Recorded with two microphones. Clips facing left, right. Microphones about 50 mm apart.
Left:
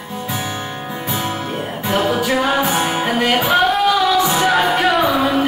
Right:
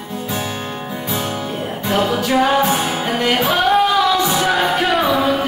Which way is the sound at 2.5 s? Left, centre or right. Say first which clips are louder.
Right 2 dB; centre.